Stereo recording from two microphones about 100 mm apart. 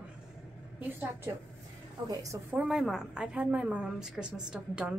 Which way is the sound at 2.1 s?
35° right (ahead or behind).